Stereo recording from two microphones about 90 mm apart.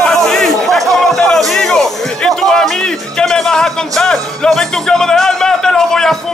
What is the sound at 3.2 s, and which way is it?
Music, 5° left (ahead or behind).